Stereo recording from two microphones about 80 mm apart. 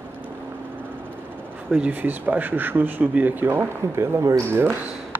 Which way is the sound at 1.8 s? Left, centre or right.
Right.